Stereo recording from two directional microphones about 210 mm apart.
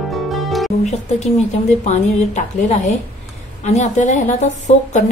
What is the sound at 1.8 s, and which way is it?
A woman's voice, 35° left (ahead or behind).